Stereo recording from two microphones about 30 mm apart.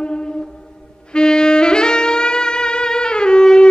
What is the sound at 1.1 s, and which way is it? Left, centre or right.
Saxophone, left.